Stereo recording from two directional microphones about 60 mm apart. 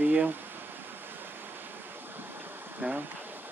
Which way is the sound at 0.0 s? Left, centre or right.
Right.